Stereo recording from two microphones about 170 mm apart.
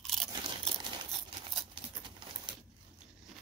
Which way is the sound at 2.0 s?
25° right (ahead or behind).